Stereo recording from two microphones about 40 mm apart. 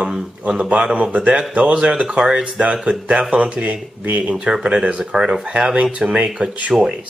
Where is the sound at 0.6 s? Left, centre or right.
Right.